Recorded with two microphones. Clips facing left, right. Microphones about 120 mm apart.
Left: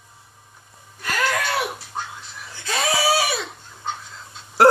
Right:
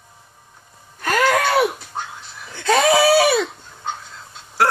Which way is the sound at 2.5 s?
65° right (ahead or behind).